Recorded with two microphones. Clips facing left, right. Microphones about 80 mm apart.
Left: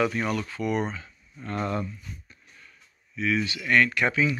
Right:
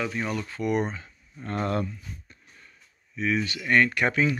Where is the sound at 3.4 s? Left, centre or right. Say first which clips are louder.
Right 1 dB; right.